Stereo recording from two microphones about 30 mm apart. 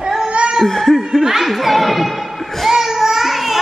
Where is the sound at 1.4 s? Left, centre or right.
Centre.